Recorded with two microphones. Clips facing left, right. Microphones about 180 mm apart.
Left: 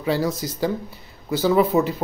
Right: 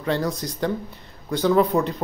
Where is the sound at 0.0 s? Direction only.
5° left (ahead or behind).